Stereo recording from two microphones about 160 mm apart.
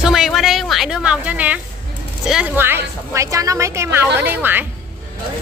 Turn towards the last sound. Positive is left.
turn(degrees=-10)  # may be behind; listen again after turning